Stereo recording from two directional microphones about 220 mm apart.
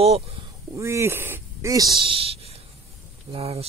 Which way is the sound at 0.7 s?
10° right (ahead or behind).